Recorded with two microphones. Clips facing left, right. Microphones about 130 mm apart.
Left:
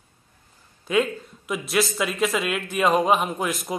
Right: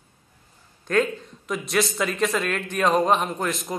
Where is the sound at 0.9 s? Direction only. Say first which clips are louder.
Even; 10° left (ahead or behind).